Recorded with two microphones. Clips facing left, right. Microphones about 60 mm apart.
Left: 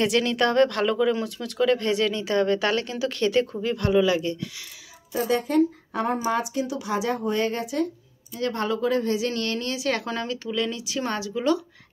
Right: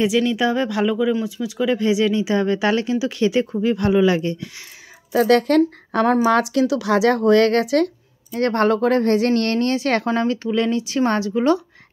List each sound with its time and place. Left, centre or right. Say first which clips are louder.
0.0 s speech: right 4 dB; centre; by 4.6 s right
5.1 s speech: right 7 dB; right
10.0 s speech: right 9 dB; right